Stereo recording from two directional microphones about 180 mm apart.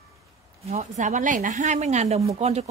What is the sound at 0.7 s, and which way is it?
Speech, 40° right (ahead or behind).